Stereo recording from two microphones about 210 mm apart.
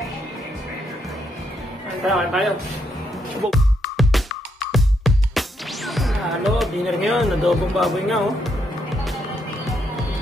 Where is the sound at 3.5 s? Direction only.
Centre (ahead or behind).